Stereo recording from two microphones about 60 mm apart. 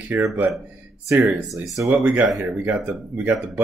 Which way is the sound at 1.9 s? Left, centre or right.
Centre.